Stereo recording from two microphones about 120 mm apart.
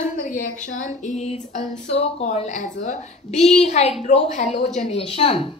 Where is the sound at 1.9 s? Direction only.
55° left (ahead or behind).